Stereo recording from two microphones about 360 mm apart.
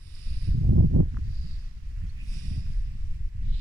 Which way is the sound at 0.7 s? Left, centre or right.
Right.